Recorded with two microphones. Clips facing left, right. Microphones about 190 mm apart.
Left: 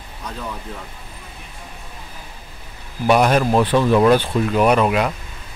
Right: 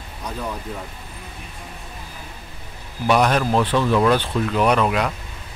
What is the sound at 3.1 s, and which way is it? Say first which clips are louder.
Speech: left 3 dB; 10° left (ahead or behind).